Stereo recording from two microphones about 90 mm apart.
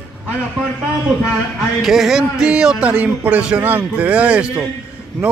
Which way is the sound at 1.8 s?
5° right (ahead or behind).